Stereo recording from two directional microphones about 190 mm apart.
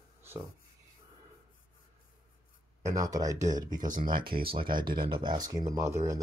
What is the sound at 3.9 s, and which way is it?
Speech, 45° right (ahead or behind).